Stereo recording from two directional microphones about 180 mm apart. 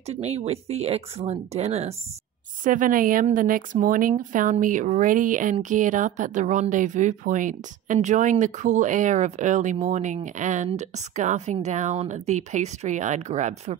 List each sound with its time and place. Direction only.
0.0 s a woman's voice: 35° right (ahead or behind)
2.6 s a woman's voice: 50° right (ahead or behind)